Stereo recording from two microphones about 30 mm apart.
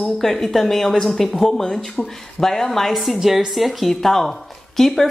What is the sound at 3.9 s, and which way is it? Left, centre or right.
A woman's voice, centre.